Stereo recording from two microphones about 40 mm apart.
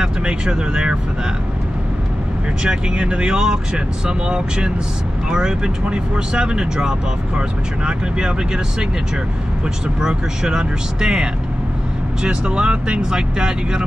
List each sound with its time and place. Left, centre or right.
0.0 s vehicle: right
2.9 s speech: right
9.9 s speech: centre